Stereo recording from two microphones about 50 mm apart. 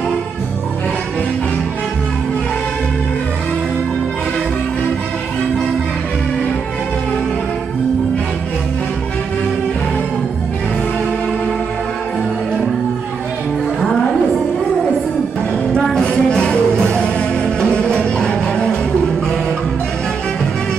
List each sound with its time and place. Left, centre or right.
16.0 s music: centre